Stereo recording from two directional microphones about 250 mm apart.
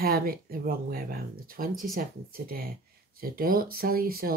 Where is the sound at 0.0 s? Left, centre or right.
Right.